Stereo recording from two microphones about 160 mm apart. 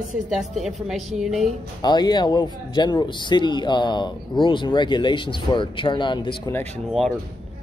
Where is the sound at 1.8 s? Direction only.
25° left (ahead or behind).